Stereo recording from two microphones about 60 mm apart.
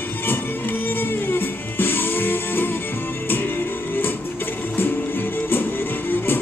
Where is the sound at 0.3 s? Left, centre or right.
Left.